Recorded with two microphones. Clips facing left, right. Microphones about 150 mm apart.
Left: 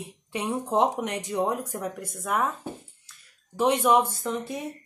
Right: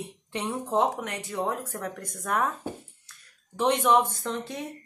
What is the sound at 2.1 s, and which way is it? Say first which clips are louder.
Speech: even; 5° left (ahead or behind).